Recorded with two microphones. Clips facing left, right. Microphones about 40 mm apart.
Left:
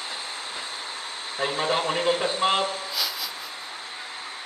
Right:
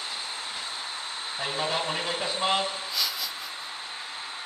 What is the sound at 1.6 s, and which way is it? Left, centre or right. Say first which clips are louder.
Speech: left 4 dB; left.